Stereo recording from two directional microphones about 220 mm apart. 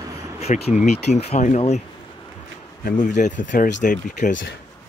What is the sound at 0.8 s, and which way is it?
Speech, 30° left (ahead or behind).